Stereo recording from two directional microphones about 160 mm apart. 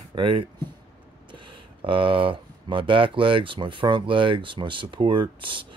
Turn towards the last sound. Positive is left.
turn(degrees=-30)  # may be behind; listen again after turning